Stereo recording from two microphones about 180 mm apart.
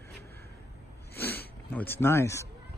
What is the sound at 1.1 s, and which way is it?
Speech, 10° left (ahead or behind).